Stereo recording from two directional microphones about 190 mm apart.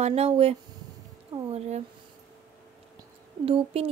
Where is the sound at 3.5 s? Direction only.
30° right (ahead or behind).